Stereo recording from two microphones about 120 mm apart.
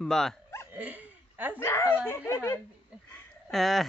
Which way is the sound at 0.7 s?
10° right (ahead or behind).